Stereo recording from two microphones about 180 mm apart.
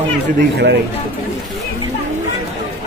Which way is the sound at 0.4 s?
70° right (ahead or behind).